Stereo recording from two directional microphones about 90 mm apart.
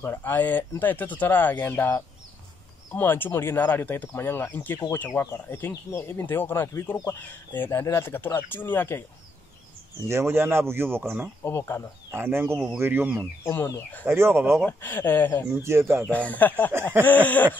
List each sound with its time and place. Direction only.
0.0 s speech: 25° left (ahead or behind)
10.0 s speech: 30° right (ahead or behind)
11.4 s speech: 25° left (ahead or behind)
12.1 s speech: 25° right (ahead or behind)
13.4 s speech: 25° left (ahead or behind)
14.0 s speech: 25° right (ahead or behind)
14.7 s speech: 25° left (ahead or behind)
15.6 s speech: 30° right (ahead or behind)
16.1 s speech: 15° left (ahead or behind)